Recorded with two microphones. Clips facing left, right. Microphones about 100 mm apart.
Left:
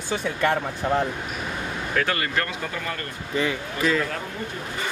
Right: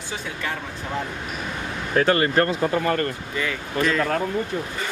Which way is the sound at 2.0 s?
35° right (ahead or behind).